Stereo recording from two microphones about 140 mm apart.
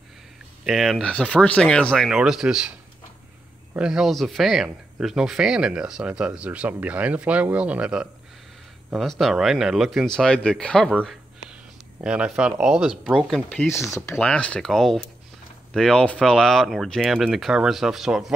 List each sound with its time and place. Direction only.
0.7 s speech: centre (ahead or behind)
3.7 s speech: 5° right (ahead or behind)
12.0 s speech: 5° right (ahead or behind)
13.7 s speech: 20° left (ahead or behind)
14.1 s speech: 5° left (ahead or behind)